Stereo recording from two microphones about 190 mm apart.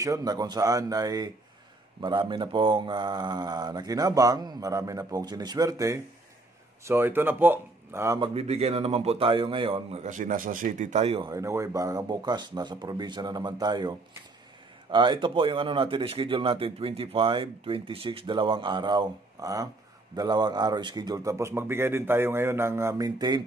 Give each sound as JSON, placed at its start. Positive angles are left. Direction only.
{"t": 0.0, "sound": "speech", "side_deg": -20}
{"t": 8.2, "sound": "speech", "side_deg": -30}
{"t": 11.2, "sound": "speech", "side_deg": -15}